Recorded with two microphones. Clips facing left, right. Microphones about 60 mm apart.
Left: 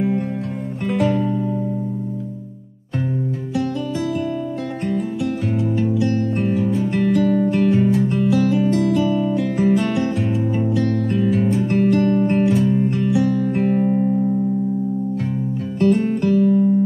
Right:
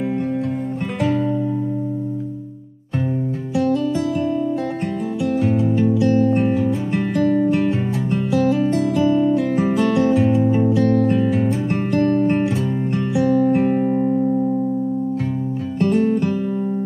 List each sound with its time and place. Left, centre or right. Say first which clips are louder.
5.2 s music: right 3 dB; centre
6.1 s music: right 4 dB; centre
8.7 s guitar: right 1 dB; centre
9.9 s music: right 5 dB; centre
12.4 s music: left 4 dB; centre
15.8 s music: even; centre